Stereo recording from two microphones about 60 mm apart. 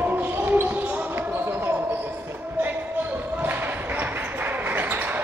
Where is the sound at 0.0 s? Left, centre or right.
Right.